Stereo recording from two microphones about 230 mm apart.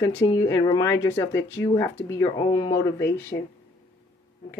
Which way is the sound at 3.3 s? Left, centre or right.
Left.